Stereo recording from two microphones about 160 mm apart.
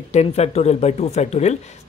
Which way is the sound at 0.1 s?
40° left (ahead or behind).